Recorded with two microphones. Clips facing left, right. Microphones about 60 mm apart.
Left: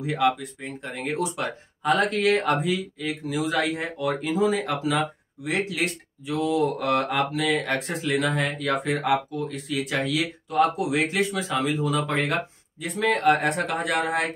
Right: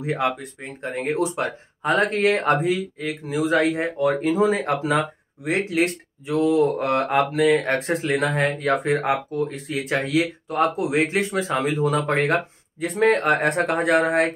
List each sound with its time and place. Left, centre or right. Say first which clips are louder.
0.0 s speech: left 1 dB; right